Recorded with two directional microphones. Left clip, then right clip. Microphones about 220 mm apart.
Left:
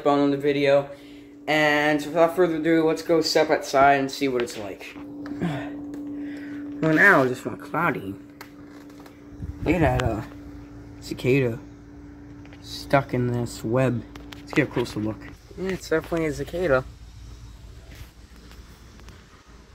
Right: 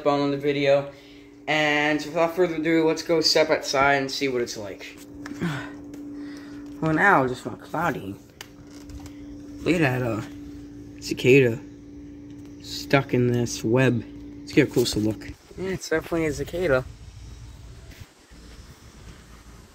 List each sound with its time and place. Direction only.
0.0 s speech: centre (ahead or behind)
5.4 s music: 20° right (ahead or behind)
6.8 s speech: 5° right (ahead or behind)
9.7 s speech: centre (ahead or behind)
12.6 s a sound: 10° left (ahead or behind)
13.3 s speech: 5° left (ahead or behind)
14.5 s speech: 10° right (ahead or behind)
16.3 s speech: 30° right (ahead or behind)